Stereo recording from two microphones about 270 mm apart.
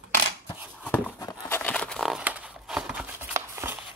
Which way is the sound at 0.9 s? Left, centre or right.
Centre.